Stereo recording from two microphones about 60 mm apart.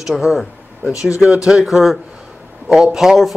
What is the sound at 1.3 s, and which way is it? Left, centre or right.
Speech, centre.